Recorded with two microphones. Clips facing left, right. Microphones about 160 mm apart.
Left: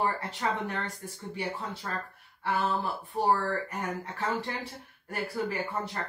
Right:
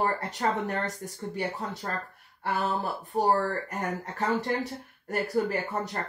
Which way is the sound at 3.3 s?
40° right (ahead or behind).